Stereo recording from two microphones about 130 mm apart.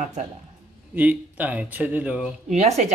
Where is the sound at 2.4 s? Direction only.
60° right (ahead or behind).